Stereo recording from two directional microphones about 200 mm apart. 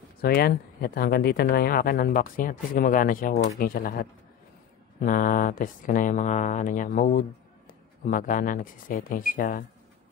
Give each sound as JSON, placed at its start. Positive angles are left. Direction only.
{"t": 0.2, "sound": "speech", "side_deg": 50}